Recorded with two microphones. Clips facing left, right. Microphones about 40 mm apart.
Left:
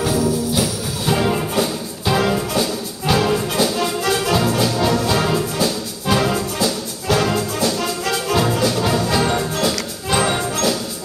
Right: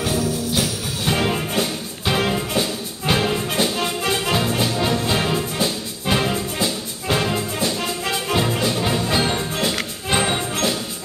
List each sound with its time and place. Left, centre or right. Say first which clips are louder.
0.5 s music: left 2 dB; right